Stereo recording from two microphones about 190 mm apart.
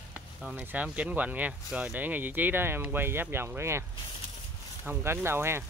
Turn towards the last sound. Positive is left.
turn(degrees=-15)  # may be behind; listen again after turning